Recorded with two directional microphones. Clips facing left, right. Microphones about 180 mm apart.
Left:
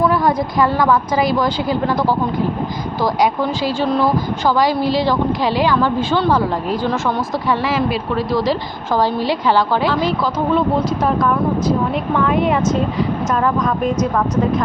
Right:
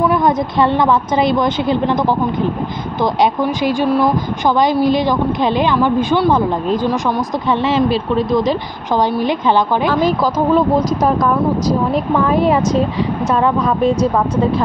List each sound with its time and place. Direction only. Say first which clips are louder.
0.0 s a woman's voice: right 1 dB; 20° right (ahead or behind)
9.9 s a woman's voice: right 3 dB; 45° right (ahead or behind)